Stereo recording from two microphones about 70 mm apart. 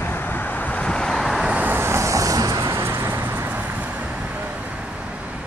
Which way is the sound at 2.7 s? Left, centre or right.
Right.